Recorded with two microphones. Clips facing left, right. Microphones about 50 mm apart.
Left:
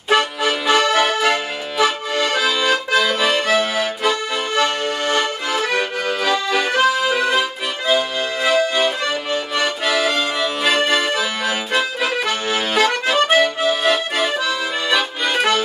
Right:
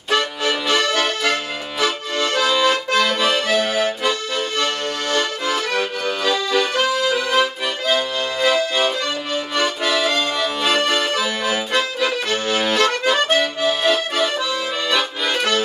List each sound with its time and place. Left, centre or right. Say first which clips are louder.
0.1 s accordion: left 3 dB; centre
4.4 s accordion: left 3 dB; centre